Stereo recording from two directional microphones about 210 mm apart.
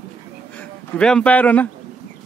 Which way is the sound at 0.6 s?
5° left (ahead or behind).